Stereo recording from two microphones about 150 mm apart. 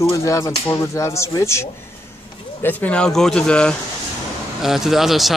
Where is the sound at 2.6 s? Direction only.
10° left (ahead or behind).